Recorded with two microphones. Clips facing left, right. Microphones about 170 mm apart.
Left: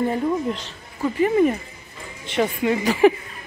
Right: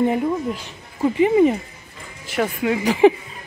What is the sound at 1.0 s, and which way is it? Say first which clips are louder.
Speech: right 3 dB; 15° right (ahead or behind).